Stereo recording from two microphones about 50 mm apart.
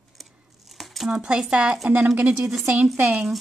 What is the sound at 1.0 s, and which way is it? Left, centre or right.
Speech, centre.